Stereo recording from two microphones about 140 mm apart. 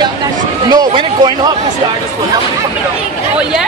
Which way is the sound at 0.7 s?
30° right (ahead or behind).